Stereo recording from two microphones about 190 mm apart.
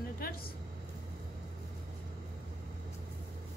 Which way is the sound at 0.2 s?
50° left (ahead or behind).